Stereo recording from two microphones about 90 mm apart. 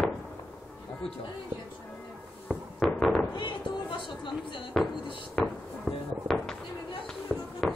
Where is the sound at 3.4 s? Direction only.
65° left (ahead or behind).